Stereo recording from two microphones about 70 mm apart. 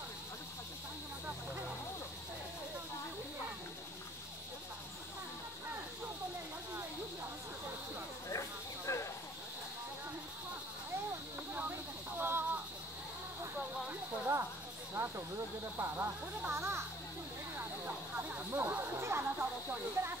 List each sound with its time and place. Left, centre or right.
8.3 s snake: left
12.2 s a sound: right
15.0 s snake: right
15.8 s speech: right
17.6 s snake: right